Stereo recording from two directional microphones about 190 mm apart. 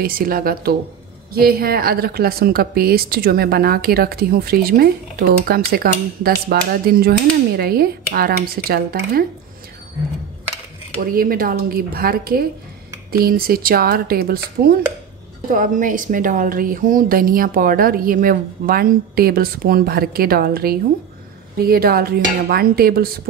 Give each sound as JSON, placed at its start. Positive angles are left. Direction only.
{"t": 0.0, "sound": "speech", "side_deg": -50}
{"t": 11.0, "sound": "speech", "side_deg": -50}